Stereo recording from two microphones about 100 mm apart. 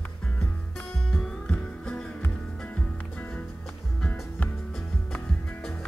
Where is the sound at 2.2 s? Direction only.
20° left (ahead or behind).